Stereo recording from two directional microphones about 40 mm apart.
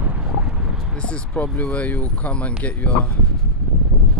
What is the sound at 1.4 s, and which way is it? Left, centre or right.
Speech, left.